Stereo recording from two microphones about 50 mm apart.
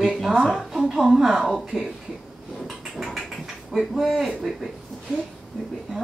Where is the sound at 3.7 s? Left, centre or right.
Centre.